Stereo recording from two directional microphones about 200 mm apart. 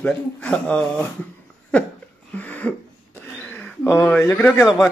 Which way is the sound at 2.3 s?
10° left (ahead or behind).